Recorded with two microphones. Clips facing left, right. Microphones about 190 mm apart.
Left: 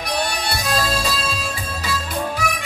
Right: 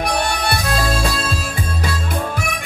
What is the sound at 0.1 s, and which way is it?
Music, 55° right (ahead or behind).